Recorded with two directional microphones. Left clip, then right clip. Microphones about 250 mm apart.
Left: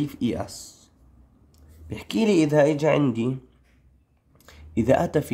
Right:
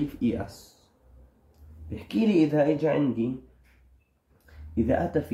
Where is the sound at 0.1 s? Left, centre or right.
Left.